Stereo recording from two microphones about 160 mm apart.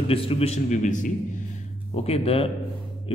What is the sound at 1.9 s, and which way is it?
Speech, 40° left (ahead or behind).